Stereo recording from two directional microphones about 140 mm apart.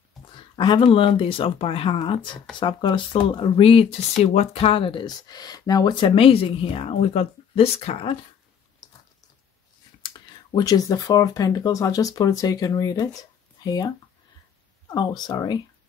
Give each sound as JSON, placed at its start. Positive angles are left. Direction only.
{"t": 0.4, "sound": "speech", "side_deg": 35}
{"t": 10.0, "sound": "speech", "side_deg": 30}
{"t": 15.0, "sound": "speech", "side_deg": 30}